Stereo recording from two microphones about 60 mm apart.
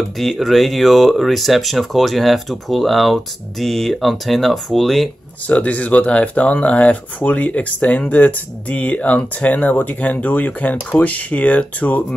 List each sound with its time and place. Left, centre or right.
0.2 s speech: centre
5.5 s speech: left